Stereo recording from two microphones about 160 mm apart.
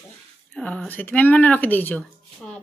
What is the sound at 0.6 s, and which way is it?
Speech, 5° left (ahead or behind).